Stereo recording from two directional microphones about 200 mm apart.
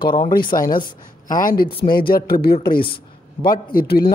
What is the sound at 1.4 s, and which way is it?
A man's voice, 45° left (ahead or behind).